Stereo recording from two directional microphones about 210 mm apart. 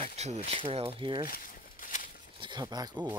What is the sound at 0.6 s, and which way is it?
Speech, 25° right (ahead or behind).